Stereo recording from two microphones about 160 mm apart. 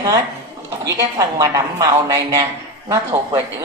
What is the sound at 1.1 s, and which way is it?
A woman's voice, 20° right (ahead or behind).